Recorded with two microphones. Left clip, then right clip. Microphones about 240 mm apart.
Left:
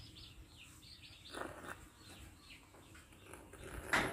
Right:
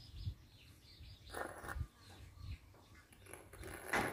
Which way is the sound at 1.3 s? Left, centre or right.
Right.